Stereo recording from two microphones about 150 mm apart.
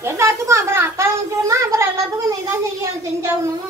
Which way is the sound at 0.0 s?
20° right (ahead or behind).